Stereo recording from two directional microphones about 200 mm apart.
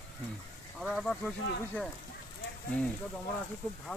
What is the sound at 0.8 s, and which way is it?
Speech, centre (ahead or behind).